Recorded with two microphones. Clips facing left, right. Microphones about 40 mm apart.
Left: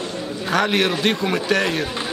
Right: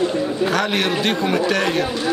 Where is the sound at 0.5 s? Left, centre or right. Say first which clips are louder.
Even; centre.